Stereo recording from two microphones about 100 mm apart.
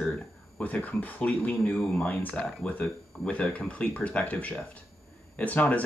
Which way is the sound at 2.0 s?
15° left (ahead or behind).